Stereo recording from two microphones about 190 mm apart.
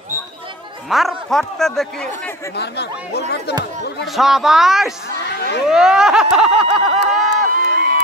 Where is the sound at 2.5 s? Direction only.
60° left (ahead or behind).